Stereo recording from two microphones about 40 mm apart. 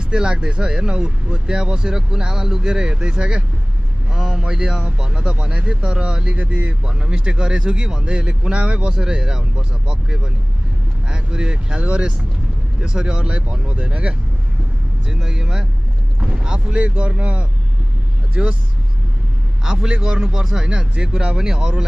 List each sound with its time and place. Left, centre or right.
0.1 s speech: right
4.1 s a man's voice: centre
6.3 s speech: right
6.9 s speech: right
15.0 s a man's voice: centre; by 18.6 s right
19.6 s a man's voice: centre